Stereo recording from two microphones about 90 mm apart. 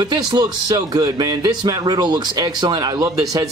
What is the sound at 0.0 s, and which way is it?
Speech, 50° right (ahead or behind).